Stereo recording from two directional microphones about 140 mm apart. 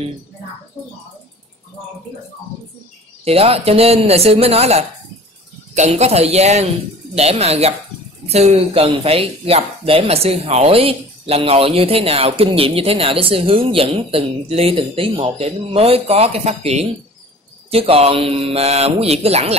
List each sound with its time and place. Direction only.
3.3 s speech: 45° right (ahead or behind)